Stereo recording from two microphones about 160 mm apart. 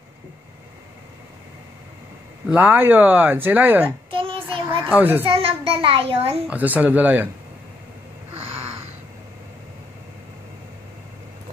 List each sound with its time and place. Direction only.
2.4 s speech: 10° right (ahead or behind)
4.1 s child singing: 35° right (ahead or behind)
4.8 s speech: 10° right (ahead or behind)
5.2 s a child's voice: 35° right (ahead or behind)
6.4 s speech: 10° right (ahead or behind)
8.4 s a sound: 40° right (ahead or behind)